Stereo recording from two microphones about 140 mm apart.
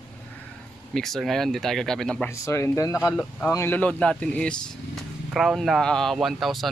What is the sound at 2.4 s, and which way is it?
Speech, 20° left (ahead or behind).